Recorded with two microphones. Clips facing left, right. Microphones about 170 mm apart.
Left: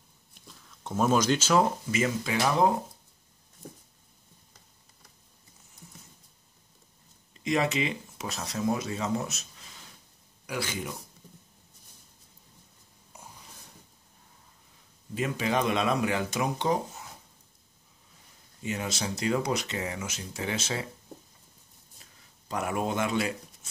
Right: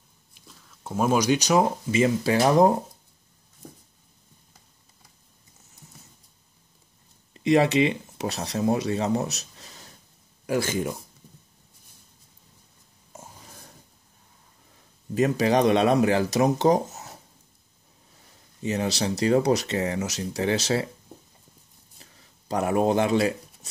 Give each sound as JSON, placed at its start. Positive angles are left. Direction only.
{"t": 0.5, "sound": "speech", "side_deg": 0}
{"t": 2.0, "sound": "speech", "side_deg": -35}
{"t": 7.4, "sound": "speech", "side_deg": -35}
{"t": 13.1, "sound": "a sound", "side_deg": -45}
{"t": 15.1, "sound": "speech", "side_deg": -40}
{"t": 18.6, "sound": "speech", "side_deg": -35}
{"t": 22.5, "sound": "speech", "side_deg": -35}